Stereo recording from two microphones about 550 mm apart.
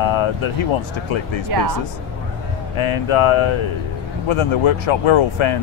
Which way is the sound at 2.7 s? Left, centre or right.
Left.